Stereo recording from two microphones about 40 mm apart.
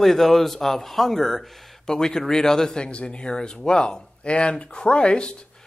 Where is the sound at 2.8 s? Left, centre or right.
Left.